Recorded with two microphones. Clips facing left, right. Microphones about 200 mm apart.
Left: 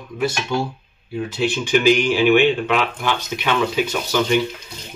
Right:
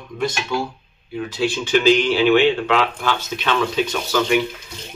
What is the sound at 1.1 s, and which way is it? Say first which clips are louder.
Speech: even; 25° left (ahead or behind).